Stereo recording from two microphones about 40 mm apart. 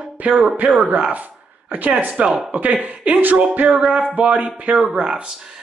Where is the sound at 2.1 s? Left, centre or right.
Right.